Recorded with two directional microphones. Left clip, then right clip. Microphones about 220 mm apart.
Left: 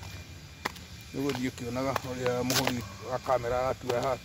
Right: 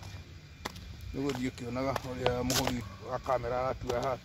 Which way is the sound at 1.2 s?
10° right (ahead or behind).